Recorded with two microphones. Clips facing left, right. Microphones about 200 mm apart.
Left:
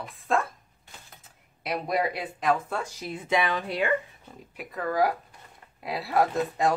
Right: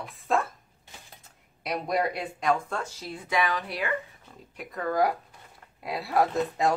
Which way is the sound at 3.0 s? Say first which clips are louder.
Left 2 dB; 20° left (ahead or behind).